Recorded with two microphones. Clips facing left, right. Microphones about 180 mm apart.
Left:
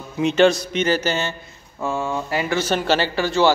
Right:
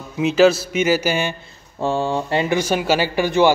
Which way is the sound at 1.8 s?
30° right (ahead or behind).